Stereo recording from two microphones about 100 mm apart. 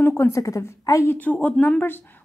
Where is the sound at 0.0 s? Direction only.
25° left (ahead or behind).